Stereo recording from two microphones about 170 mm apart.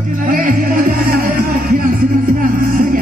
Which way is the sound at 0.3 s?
50° right (ahead or behind).